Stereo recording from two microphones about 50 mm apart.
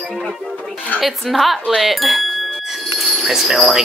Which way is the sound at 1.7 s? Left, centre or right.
Centre.